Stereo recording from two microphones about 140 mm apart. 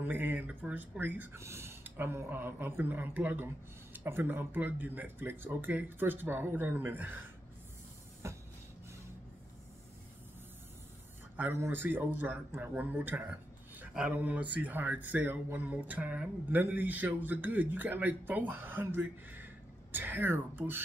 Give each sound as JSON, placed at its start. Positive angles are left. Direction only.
{"t": 0.0, "sound": "speech", "side_deg": -15}
{"t": 8.2, "sound": "train", "side_deg": -20}
{"t": 11.3, "sound": "speech", "side_deg": -15}